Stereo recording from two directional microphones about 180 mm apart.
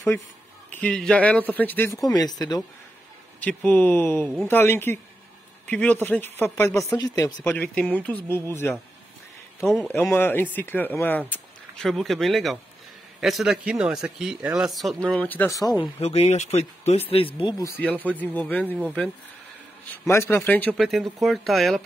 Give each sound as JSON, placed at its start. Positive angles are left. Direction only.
{"t": 0.7, "sound": "speech", "side_deg": 10}
{"t": 2.0, "sound": "speech", "side_deg": 20}
{"t": 3.3, "sound": "speech", "side_deg": 10}
{"t": 9.8, "sound": "a man's voice", "side_deg": 10}
{"t": 16.0, "sound": "speech", "side_deg": 35}
{"t": 17.4, "sound": "speech", "side_deg": 20}
{"t": 17.8, "sound": "speech", "side_deg": 10}
{"t": 19.9, "sound": "a man's voice", "side_deg": 15}